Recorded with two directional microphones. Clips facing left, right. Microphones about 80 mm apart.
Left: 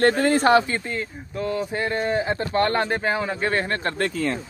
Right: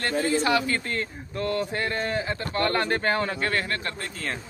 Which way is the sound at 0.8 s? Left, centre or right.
Centre.